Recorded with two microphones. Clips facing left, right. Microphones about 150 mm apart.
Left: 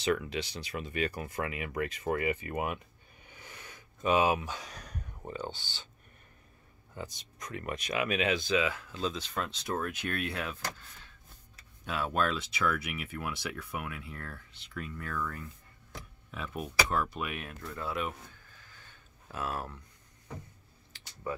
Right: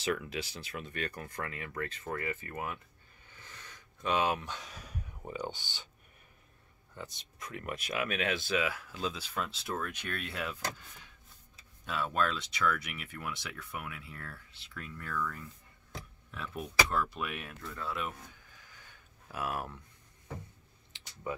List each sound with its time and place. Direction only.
0.0 s speech: centre (ahead or behind); by 2.8 s 15° left (ahead or behind)
3.3 s a sound: 15° left (ahead or behind); by 5.4 s 5° right (ahead or behind)
5.4 s speech: 15° right (ahead or behind)
6.9 s speech: centre (ahead or behind)
9.8 s speech: 45° left (ahead or behind)
11.8 s speech: centre (ahead or behind)
16.3 s speech: 5° left (ahead or behind)
18.3 s a sound: 15° right (ahead or behind)
19.3 s speech: 15° right (ahead or behind)
20.9 s a sound: 15° right (ahead or behind)